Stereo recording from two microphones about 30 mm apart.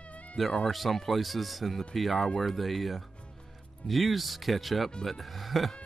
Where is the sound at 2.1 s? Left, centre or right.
Left.